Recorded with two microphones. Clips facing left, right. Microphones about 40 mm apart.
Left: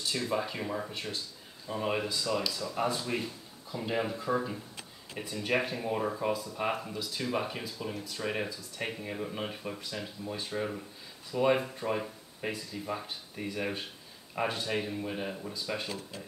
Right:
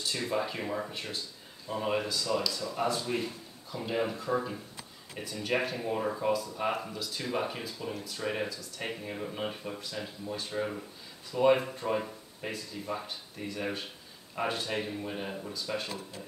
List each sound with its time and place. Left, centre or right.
0.3 s speech: centre